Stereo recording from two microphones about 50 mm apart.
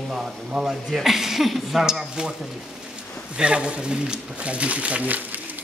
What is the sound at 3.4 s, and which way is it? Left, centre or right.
Speech, right.